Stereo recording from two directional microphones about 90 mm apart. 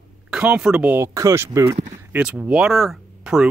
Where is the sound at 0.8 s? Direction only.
25° right (ahead or behind).